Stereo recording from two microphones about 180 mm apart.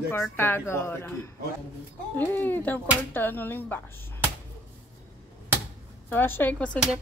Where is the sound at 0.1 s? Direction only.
10° left (ahead or behind).